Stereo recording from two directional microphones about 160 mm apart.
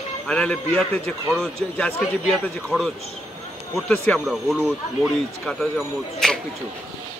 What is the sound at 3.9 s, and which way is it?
Speech, 10° left (ahead or behind).